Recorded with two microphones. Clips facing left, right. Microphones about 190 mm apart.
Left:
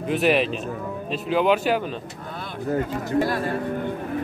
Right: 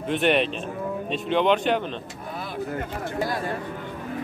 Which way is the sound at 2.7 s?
40° left (ahead or behind).